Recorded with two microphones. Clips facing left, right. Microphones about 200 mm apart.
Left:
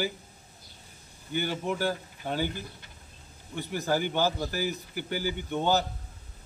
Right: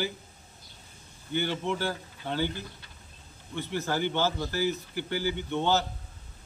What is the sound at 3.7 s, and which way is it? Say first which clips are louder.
A man's voice: left 1 dB; 10° left (ahead or behind).